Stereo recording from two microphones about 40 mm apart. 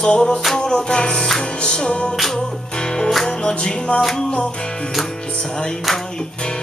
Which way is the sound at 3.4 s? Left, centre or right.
Left.